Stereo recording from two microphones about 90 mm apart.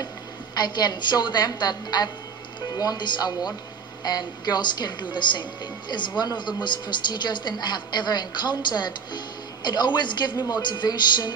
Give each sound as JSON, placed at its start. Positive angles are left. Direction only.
{"t": 0.6, "sound": "a woman's voice", "side_deg": 50}